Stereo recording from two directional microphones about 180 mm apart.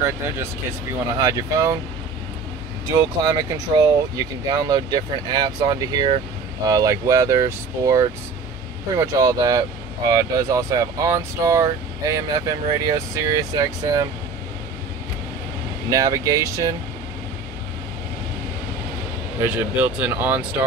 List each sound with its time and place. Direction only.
1.1 s speech: 20° right (ahead or behind)
2.9 s speech: 20° right (ahead or behind)
15.9 s speech: 20° right (ahead or behind)
19.4 s speech: 10° right (ahead or behind)